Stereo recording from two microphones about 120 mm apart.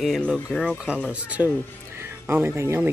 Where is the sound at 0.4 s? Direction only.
5° left (ahead or behind).